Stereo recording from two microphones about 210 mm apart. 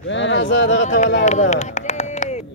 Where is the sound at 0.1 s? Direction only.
60° left (ahead or behind).